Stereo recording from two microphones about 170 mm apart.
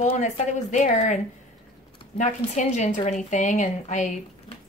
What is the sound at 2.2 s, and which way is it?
Speech, 45° left (ahead or behind).